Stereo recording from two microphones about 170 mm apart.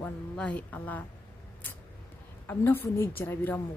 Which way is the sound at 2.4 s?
10° left (ahead or behind).